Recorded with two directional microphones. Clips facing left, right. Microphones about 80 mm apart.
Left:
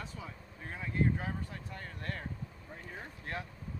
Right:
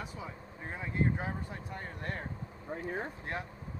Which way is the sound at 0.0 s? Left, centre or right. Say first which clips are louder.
Right 3 dB; centre.